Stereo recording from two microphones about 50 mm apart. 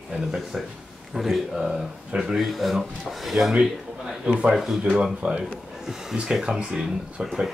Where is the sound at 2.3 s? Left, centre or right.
Centre.